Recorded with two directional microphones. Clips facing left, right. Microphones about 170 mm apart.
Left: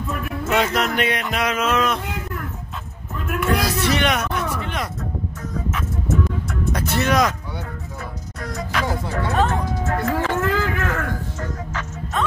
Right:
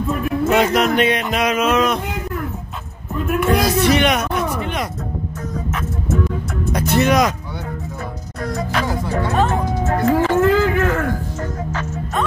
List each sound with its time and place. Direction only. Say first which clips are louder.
0.1 s music: right 5 dB; 30° right (ahead or behind)
3.3 s music: right 4 dB; 20° right (ahead or behind)
3.9 s speech: right 4 dB; 15° right (ahead or behind)
6.7 s speech: right 5 dB; 20° right (ahead or behind)
8.4 s speech: right 5 dB; 35° right (ahead or behind)
9.5 s music: right 4 dB; 25° right (ahead or behind)